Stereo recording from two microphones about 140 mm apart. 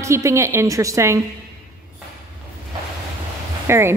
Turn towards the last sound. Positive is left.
turn(degrees=-20)  # may be behind; listen again after turning